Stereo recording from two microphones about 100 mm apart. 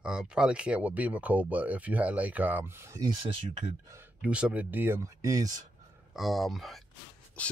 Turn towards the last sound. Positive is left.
turn(degrees=15)  # may be behind; listen again after turning